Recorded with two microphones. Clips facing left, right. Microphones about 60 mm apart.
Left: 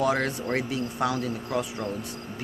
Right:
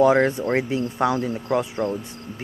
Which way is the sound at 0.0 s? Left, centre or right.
Right.